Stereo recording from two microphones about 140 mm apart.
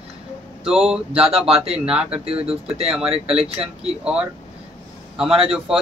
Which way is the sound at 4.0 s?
5° right (ahead or behind).